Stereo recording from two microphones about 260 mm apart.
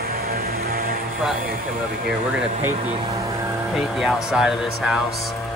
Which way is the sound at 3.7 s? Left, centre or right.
Centre.